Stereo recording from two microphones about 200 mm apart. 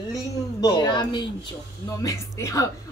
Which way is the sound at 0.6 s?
20° left (ahead or behind).